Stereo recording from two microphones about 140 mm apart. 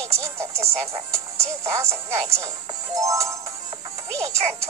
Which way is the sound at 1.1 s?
20° right (ahead or behind).